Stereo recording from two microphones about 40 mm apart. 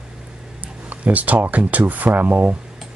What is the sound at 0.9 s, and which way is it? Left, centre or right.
Speech, right.